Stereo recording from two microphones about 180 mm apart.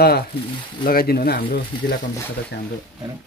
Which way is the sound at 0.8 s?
55° left (ahead or behind).